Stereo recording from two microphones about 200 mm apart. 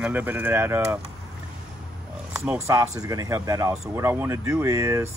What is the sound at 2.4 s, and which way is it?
Speech, 10° right (ahead or behind).